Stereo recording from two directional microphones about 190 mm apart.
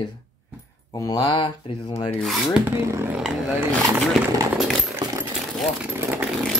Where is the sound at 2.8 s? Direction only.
15° right (ahead or behind).